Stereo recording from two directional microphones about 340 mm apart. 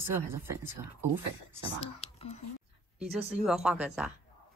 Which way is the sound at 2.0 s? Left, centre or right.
Centre.